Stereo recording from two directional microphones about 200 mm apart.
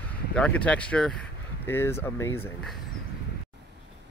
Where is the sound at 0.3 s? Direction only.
5° left (ahead or behind).